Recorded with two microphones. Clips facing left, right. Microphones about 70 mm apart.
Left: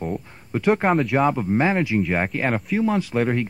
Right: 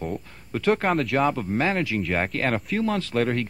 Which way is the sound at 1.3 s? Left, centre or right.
Centre.